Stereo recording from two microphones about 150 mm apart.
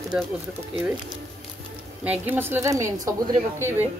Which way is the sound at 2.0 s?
10° right (ahead or behind).